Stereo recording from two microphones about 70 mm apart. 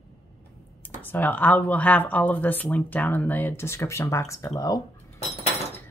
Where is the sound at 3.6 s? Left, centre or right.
Left.